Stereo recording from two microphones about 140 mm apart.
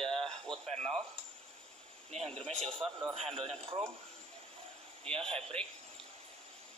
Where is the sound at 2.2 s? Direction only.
5° left (ahead or behind).